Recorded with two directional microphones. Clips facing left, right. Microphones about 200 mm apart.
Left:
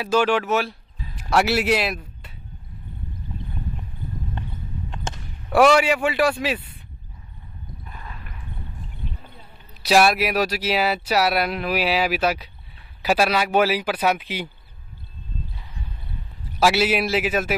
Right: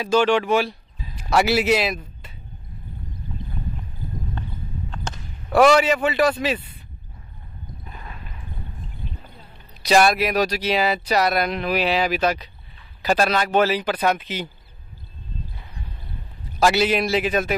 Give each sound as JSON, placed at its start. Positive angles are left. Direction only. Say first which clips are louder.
{"t": 0.0, "sound": "a man's voice", "louder": "right 2 dB", "side_deg": 5}
{"t": 5.5, "sound": "speech", "louder": "right 1 dB", "side_deg": 5}
{"t": 7.8, "sound": "a sound", "louder": "even", "side_deg": -25}
{"t": 9.8, "sound": "speech", "louder": "even", "side_deg": 5}
{"t": 16.5, "sound": "a man's voice", "louder": "right 1 dB", "side_deg": 5}